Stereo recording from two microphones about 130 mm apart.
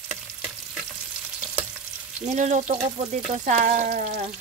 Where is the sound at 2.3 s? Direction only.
65° right (ahead or behind).